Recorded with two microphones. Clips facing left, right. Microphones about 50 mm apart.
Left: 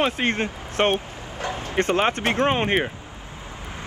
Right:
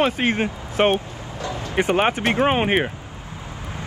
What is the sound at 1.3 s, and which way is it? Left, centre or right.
Vehicle, left.